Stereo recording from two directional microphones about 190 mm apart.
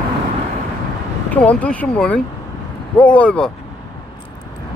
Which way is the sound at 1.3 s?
10° left (ahead or behind).